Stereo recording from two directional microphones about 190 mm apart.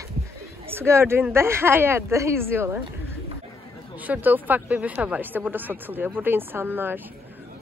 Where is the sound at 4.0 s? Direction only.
10° right (ahead or behind).